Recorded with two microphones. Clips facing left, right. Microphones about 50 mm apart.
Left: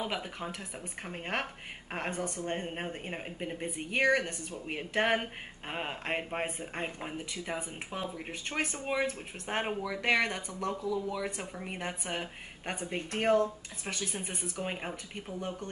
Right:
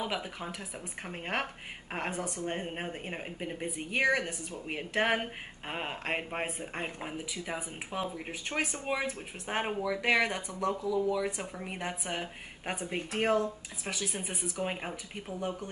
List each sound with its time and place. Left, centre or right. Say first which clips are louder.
0.0 s speech: even; centre